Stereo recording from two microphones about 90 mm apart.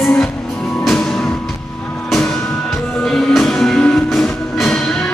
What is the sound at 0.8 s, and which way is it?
Music, 5° left (ahead or behind).